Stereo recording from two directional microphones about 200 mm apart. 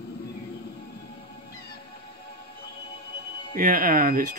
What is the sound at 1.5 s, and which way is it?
Music, 50° left (ahead or behind).